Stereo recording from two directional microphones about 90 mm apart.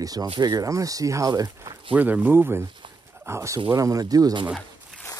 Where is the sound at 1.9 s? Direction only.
20° right (ahead or behind); by 4.3 s 45° right (ahead or behind).